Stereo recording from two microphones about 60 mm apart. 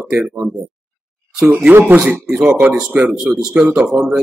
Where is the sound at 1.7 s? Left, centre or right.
Right.